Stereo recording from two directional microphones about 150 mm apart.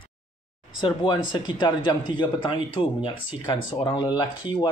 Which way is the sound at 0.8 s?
35° left (ahead or behind).